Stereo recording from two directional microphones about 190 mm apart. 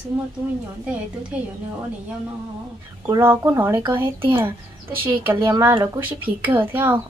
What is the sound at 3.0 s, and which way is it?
A woman's voice, 15° right (ahead or behind).